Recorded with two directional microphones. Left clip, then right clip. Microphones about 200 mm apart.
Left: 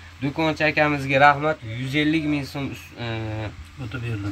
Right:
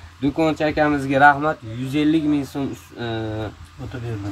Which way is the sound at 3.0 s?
5° left (ahead or behind).